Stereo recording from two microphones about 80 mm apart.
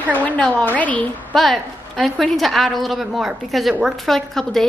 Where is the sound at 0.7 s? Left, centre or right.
Centre.